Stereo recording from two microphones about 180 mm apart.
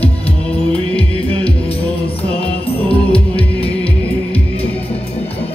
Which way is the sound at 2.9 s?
30° left (ahead or behind).